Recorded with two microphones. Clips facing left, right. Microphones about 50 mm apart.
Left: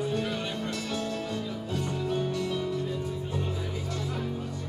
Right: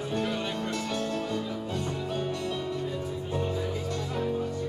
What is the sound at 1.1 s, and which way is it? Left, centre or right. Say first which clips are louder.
Music: right 2 dB; centre.